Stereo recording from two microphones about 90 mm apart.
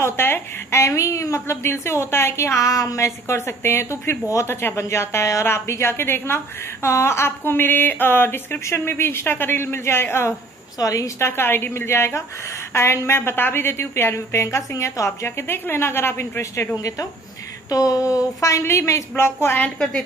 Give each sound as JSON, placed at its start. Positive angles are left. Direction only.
{"t": 0.0, "sound": "a woman's voice", "side_deg": 30}
{"t": 10.8, "sound": "a woman's voice", "side_deg": 40}
{"t": 16.7, "sound": "speech", "side_deg": 40}